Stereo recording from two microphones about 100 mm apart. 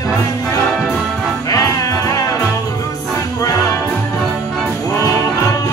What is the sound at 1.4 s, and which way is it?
Music, 35° left (ahead or behind).